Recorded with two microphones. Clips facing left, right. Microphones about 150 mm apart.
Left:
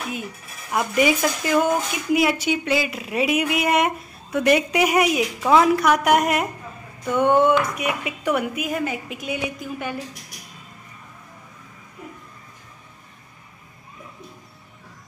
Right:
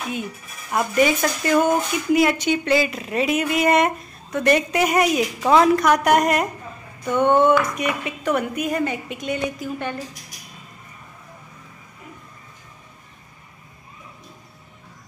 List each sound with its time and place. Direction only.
0.1 s speech: 5° left (ahead or behind)